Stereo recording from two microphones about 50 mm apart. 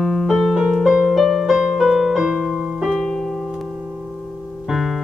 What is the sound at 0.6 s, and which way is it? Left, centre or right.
Music, centre.